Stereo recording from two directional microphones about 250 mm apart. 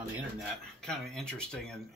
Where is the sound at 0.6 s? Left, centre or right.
Centre.